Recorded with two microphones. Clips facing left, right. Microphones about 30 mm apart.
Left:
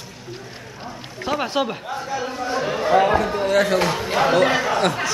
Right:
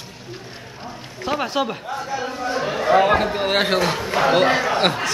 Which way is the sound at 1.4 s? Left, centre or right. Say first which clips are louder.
Even; centre.